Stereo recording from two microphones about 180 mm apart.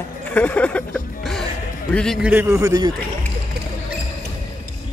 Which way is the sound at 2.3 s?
15° right (ahead or behind).